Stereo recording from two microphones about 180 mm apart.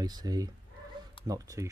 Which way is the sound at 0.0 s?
20° right (ahead or behind).